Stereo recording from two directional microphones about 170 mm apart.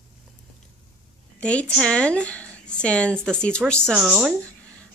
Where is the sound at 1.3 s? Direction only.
5° left (ahead or behind).